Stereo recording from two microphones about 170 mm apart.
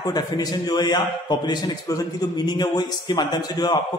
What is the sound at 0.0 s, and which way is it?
A man's voice, 25° left (ahead or behind).